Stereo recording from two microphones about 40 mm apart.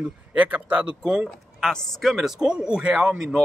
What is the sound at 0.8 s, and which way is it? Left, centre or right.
Speech, centre.